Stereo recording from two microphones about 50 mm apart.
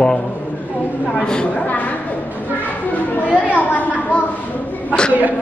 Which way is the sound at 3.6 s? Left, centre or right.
Left.